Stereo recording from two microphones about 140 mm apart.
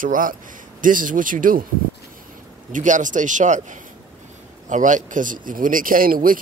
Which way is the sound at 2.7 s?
65° right (ahead or behind).